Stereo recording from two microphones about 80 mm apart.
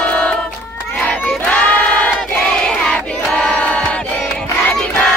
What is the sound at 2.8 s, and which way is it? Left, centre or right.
Choir, centre.